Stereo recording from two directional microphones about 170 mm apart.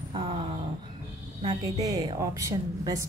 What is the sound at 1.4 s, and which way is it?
Speech, 20° right (ahead or behind).